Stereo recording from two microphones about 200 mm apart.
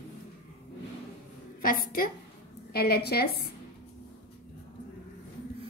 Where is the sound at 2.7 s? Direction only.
50° left (ahead or behind).